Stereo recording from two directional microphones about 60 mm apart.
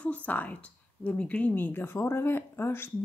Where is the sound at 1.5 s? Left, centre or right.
Left.